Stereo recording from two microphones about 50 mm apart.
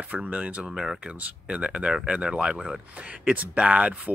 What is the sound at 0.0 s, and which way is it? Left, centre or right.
Speech, right.